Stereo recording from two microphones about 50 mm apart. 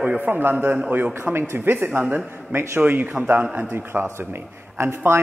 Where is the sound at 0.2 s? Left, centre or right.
Right.